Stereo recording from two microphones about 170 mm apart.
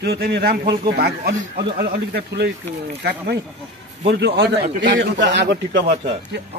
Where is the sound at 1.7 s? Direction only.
65° right (ahead or behind).